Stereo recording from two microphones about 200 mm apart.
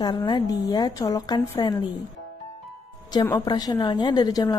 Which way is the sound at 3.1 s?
15° left (ahead or behind).